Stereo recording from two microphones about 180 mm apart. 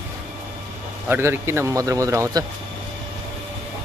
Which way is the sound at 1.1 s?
10° right (ahead or behind).